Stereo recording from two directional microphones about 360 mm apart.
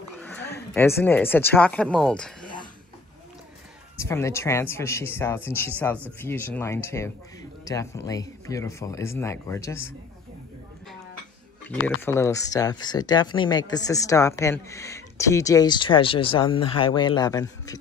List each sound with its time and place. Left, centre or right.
0.7 s speech: centre
4.0 s speech: centre
11.6 s speech: centre